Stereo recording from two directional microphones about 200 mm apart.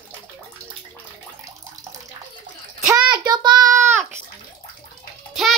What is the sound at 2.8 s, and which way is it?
Child singing, 20° right (ahead or behind).